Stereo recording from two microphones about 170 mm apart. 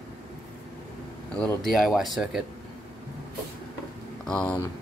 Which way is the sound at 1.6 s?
Centre (ahead or behind).